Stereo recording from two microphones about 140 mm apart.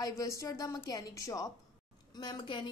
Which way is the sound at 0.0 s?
25° left (ahead or behind).